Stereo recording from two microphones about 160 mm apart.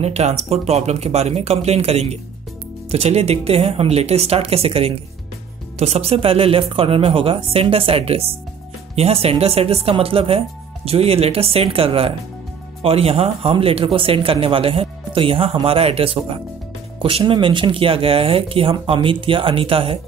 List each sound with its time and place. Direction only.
0.0 s speech: 45° right (ahead or behind)